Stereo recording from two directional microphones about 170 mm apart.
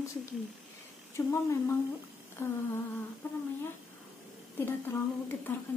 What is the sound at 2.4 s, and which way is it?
Speech, 15° left (ahead or behind).